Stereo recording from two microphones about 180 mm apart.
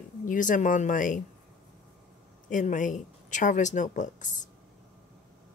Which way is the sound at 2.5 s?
45° left (ahead or behind).